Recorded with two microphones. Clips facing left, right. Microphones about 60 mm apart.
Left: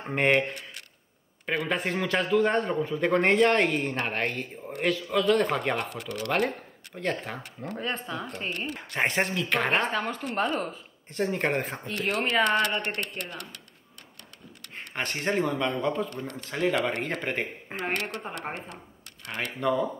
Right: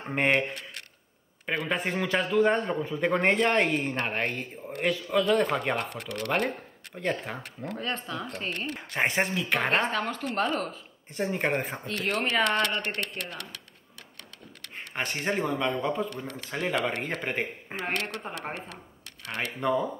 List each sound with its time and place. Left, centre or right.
0.0 s a man's voice: centre
5.9 s speech: right
6.2 s a man's voice: centre
7.7 s speech: centre
8.7 s a man's voice: centre
9.7 s speech: centre
11.1 s a man's voice: centre
14.8 s a man's voice: centre
19.6 s a man's voice: centre